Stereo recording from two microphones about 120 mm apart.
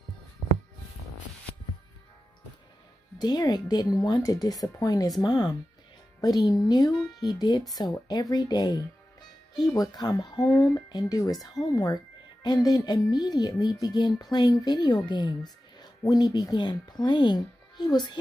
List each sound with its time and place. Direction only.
3.2 s speech: 35° left (ahead or behind)